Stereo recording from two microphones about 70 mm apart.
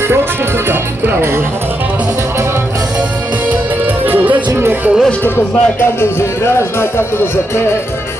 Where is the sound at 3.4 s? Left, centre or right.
Right.